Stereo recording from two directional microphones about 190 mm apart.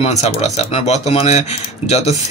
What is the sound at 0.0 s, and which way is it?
Speech, 35° left (ahead or behind).